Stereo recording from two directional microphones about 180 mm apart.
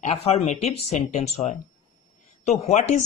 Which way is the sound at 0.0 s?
35° left (ahead or behind).